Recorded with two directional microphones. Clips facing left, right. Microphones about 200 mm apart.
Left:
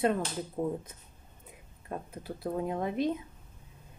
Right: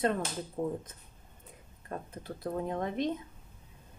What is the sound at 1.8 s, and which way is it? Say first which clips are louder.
A woman's voice: left 1 dB; 10° left (ahead or behind).